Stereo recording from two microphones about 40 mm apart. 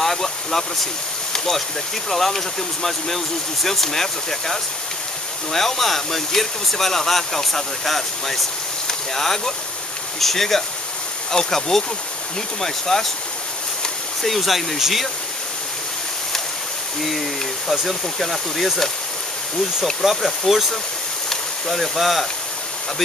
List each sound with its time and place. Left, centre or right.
0.0 s speech: centre
1.3 s a sound: centre
2.0 s speech: centre
14.2 s speech: centre
17.6 s speech: centre
20.0 s speech: centre
21.3 s a sound: centre